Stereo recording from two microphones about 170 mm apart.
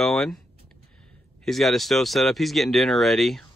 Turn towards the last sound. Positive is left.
turn(degrees=0)  # may be behind; listen again after turning